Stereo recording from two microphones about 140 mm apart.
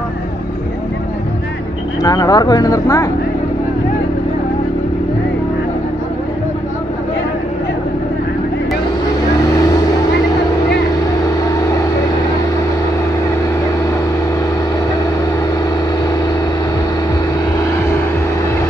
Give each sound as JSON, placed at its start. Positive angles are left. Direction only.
{"t": 2.0, "sound": "speech", "side_deg": 25}
{"t": 9.6, "sound": "vehicle", "side_deg": 25}
{"t": 11.2, "sound": "vehicle", "side_deg": 25}